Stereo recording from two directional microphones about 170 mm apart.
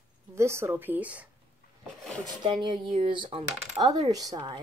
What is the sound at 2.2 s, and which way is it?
Speech, 25° right (ahead or behind).